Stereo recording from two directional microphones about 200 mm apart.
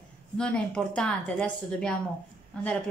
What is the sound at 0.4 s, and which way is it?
A woman's voice, 5° left (ahead or behind).